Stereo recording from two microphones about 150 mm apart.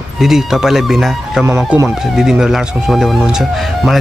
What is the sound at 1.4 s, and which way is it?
Speech, 15° right (ahead or behind).